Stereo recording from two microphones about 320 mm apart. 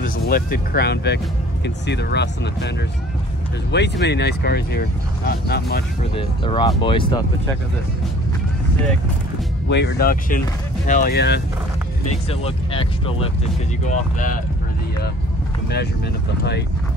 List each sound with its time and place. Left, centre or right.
0.0 s speech: left
3.7 s speech: left
6.1 s speech: centre
9.7 s speech: left
12.1 s speech: centre